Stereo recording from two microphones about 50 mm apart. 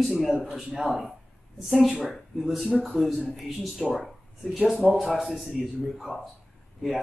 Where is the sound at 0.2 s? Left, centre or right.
Centre.